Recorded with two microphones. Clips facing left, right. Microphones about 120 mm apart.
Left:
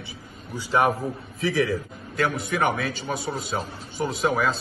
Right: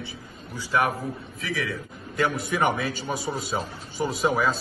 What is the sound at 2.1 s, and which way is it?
A man's voice, centre (ahead or behind).